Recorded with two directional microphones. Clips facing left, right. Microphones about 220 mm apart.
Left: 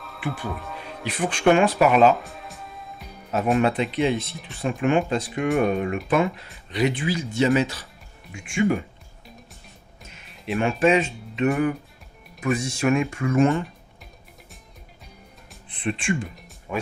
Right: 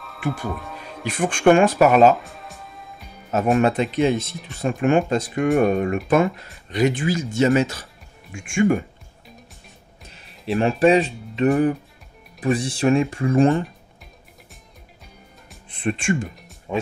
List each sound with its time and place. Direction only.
0.2 s speech: 45° right (ahead or behind)
2.1 s music: centre (ahead or behind)
3.3 s speech: 45° right (ahead or behind)
10.0 s music: 35° right (ahead or behind)
11.3 s speech: 35° right (ahead or behind)
15.7 s speech: 45° right (ahead or behind)
16.7 s speech: 20° right (ahead or behind)